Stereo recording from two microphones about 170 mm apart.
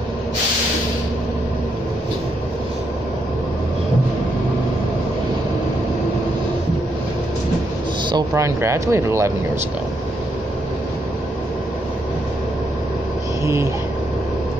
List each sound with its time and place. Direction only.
8.1 s speech: 20° right (ahead or behind)